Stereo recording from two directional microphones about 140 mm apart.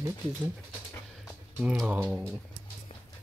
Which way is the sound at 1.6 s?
10° right (ahead or behind).